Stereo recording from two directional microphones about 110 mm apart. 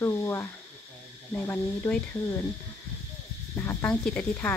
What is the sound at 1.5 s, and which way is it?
Speech, 10° left (ahead or behind).